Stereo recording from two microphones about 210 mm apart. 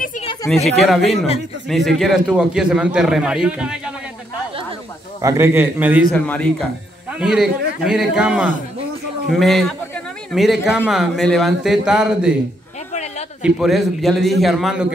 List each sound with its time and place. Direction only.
0.7 s a man's voice: centre (ahead or behind)
1.0 s a man's voice: 30° left (ahead or behind)
1.7 s a man's voice: centre (ahead or behind)
5.2 s a man's voice: 10° right (ahead or behind)
6.1 s a man's voice: 5° left (ahead or behind)
13.4 s a man's voice: centre (ahead or behind)